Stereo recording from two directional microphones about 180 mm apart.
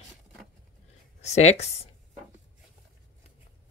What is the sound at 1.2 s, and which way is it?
Speech, 35° left (ahead or behind).